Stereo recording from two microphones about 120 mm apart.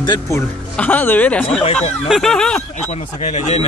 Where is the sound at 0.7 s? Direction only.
15° left (ahead or behind).